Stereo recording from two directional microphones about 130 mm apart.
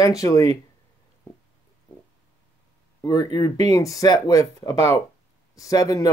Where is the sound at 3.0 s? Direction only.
30° left (ahead or behind).